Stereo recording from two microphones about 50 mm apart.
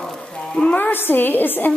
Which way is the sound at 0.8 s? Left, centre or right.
Left.